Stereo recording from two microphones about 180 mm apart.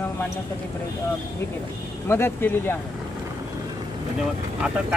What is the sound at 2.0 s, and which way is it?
Speech, 10° left (ahead or behind).